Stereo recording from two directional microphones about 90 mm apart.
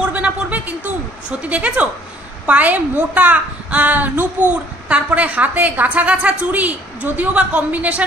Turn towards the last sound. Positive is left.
turn(degrees=-15)  # may be behind; listen again after turning